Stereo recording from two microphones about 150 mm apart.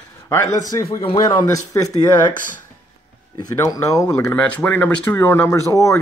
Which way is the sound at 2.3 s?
60° left (ahead or behind).